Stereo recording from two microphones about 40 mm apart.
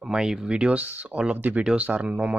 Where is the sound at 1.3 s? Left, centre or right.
Right.